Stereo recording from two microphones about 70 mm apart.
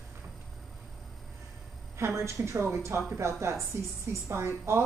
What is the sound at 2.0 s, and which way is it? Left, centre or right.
A woman's voice, right.